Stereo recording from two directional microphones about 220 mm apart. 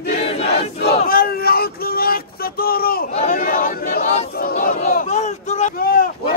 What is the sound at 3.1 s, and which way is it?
Battle cry, 35° left (ahead or behind).